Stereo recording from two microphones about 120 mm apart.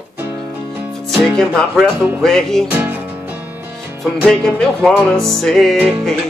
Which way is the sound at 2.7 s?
15° right (ahead or behind).